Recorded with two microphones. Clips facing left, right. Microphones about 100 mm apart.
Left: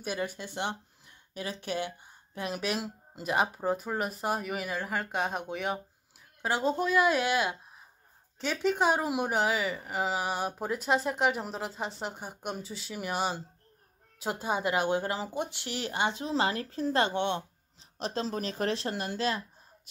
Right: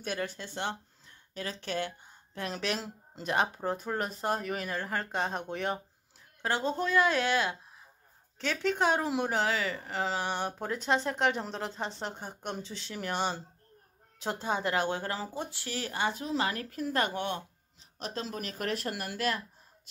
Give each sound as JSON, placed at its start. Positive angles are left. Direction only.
{"t": 0.0, "sound": "speech", "side_deg": 10}